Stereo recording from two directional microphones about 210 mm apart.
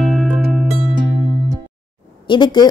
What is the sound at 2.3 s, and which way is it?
Speech, 20° left (ahead or behind).